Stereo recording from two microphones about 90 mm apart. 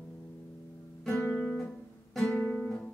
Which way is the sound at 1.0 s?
10° left (ahead or behind).